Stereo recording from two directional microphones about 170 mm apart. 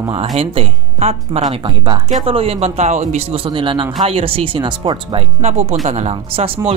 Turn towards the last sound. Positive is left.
turn(degrees=-35)  # may be behind; listen again after turning